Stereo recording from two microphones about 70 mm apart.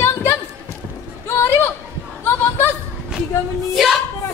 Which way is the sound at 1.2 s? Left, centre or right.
Left.